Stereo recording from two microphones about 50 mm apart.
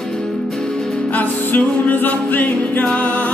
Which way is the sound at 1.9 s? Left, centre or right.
Left.